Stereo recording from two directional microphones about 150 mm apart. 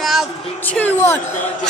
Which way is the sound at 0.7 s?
15° left (ahead or behind).